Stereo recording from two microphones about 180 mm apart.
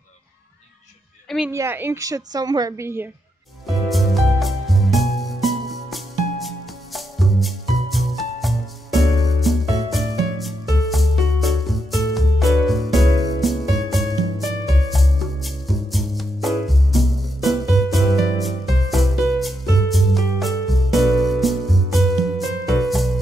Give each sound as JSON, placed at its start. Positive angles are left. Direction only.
{"t": 1.5, "sound": "a woman's voice", "side_deg": -15}
{"t": 3.6, "sound": "music", "side_deg": 0}